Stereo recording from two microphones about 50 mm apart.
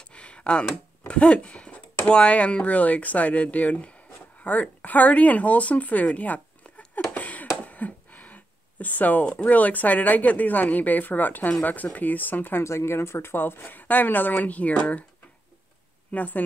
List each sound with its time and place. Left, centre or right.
0.0 s a sound: left
1.0 s speech: left
7.2 s a sound: left
9.4 s speech: left
12.6 s speech: left
16.1 s speech: left